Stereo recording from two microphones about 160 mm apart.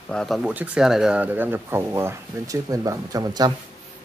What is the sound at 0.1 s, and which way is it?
Speech, centre (ahead or behind).